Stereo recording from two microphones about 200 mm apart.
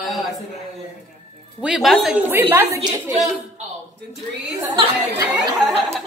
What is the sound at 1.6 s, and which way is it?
Speech, centre (ahead or behind).